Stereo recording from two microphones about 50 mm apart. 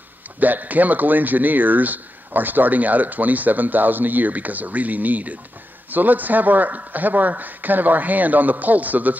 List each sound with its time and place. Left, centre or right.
0.4 s speech: right